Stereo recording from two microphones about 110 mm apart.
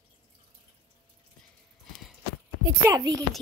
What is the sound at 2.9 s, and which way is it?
Speech, 35° right (ahead or behind).